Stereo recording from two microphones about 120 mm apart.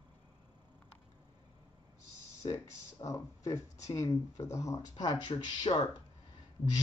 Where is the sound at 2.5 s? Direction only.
25° left (ahead or behind).